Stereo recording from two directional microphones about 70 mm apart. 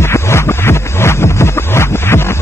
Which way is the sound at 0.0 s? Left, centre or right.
Left.